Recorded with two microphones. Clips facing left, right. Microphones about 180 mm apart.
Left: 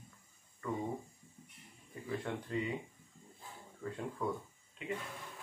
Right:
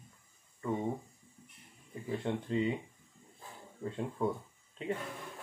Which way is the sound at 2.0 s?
25° right (ahead or behind).